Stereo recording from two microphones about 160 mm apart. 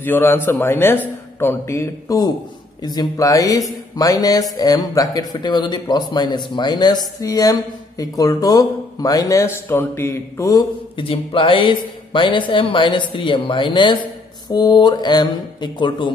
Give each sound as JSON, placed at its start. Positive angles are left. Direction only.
{"t": 0.0, "sound": "a man's voice", "side_deg": 15}
{"t": 11.0, "sound": "speech", "side_deg": 35}